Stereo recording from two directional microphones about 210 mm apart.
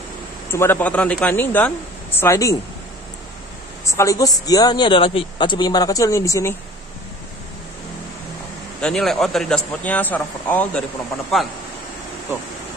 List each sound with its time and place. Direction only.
0.5 s speech: 10° left (ahead or behind)
3.8 s speech: 15° left (ahead or behind)
8.8 s speech: centre (ahead or behind)